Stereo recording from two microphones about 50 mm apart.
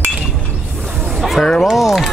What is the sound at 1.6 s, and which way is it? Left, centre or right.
Music, centre.